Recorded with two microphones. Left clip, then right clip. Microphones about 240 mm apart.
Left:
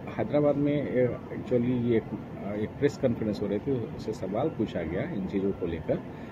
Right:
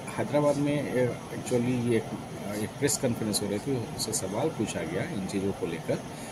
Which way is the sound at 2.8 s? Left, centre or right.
Centre.